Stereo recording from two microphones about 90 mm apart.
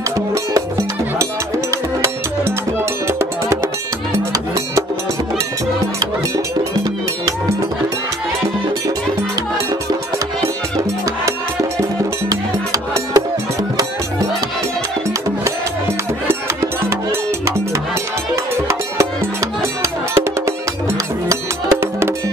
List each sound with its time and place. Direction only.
2.0 s music: 30° right (ahead or behind)
12.3 s music: 40° right (ahead or behind)
18.3 s music: 30° right (ahead or behind)